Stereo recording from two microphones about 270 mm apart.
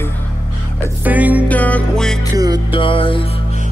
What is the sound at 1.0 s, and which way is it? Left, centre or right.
Music, centre.